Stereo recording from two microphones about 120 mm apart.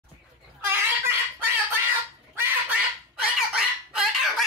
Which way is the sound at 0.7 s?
20° right (ahead or behind).